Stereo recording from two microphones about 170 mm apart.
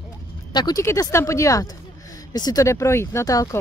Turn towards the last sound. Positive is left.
turn(degrees=20)  # may be behind; listen again after turning